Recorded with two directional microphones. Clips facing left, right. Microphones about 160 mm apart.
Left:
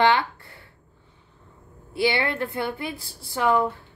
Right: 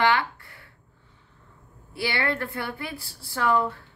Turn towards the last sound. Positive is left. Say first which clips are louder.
# left 2 dB
turn(degrees=20)  # may be behind; listen again after turning